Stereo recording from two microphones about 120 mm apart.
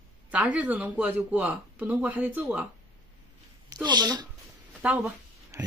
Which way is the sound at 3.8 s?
35° right (ahead or behind).